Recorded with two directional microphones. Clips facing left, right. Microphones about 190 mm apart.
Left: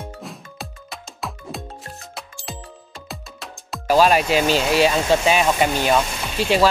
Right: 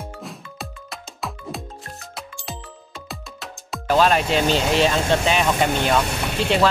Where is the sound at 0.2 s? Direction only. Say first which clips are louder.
Even; centre (ahead or behind).